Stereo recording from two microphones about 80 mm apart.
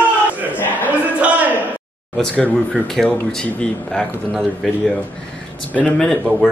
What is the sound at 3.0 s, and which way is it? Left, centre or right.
Speech, centre.